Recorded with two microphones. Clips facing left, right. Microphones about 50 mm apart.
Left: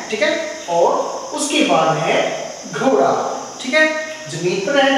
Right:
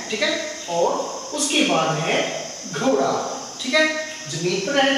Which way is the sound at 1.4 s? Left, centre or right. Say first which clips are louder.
Left 5 dB; centre.